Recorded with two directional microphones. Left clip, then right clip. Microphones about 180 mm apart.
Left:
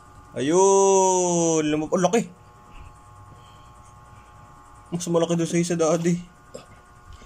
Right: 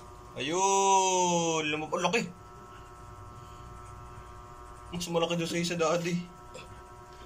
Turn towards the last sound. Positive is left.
turn(degrees=35)  # may be behind; listen again after turning